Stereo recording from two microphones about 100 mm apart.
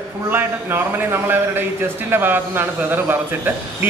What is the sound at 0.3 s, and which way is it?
A man's voice, 20° right (ahead or behind).